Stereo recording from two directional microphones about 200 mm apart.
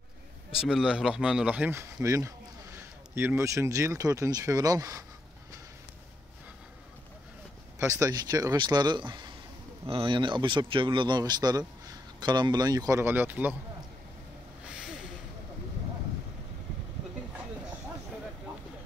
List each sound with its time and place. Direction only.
0.6 s speech: 5° right (ahead or behind)
7.8 s speech: 15° right (ahead or behind)
14.7 s a sound: 5° right (ahead or behind)